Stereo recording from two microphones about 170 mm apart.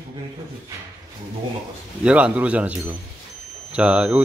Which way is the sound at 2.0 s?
5° right (ahead or behind).